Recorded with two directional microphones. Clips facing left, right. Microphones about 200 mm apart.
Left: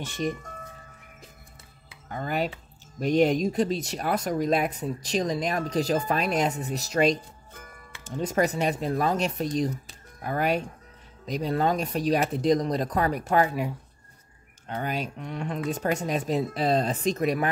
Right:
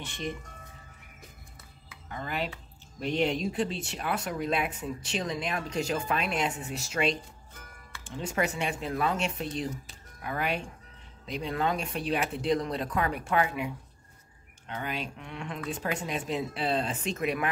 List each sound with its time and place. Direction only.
0.0 s cutlery: 45° left (ahead or behind)
2.0 s cutlery: 45° left (ahead or behind)
3.0 s speech: 45° left (ahead or behind)